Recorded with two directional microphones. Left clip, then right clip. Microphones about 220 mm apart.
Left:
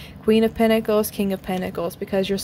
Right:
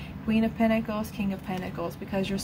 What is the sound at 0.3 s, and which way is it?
A woman's voice, 55° left (ahead or behind).